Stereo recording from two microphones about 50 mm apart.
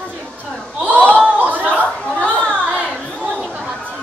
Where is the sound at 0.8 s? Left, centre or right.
Right.